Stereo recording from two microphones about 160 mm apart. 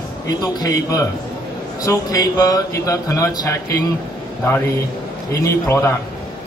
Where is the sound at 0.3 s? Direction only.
25° left (ahead or behind).